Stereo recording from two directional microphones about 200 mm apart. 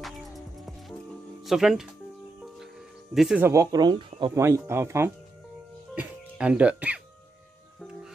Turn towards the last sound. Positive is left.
turn(degrees=-5)  # may be behind; listen again after turning